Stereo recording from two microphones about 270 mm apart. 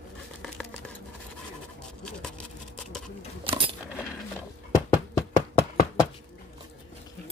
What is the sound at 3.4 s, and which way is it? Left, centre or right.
Keys jangling, centre.